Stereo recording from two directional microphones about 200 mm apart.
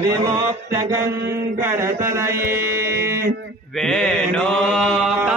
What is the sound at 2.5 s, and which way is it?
Mantra, 15° right (ahead or behind).